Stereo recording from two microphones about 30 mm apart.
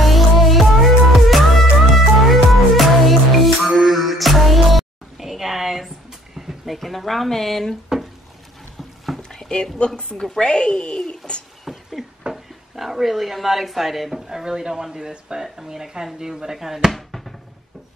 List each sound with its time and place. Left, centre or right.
0.0 s music: centre
5.1 s a sound: centre
6.7 s speech: centre
9.3 s a sound: left
9.8 s speech: left
11.6 s a sound: centre
12.7 s speech: centre
14.4 s speech: right; by 16.9 s centre
16.9 s basketball bounce: centre